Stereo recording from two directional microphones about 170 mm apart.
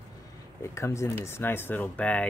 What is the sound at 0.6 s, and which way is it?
Speech, 15° left (ahead or behind).